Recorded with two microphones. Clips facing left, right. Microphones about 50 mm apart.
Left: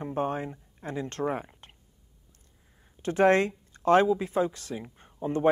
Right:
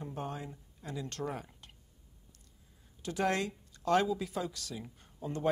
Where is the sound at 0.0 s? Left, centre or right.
Left.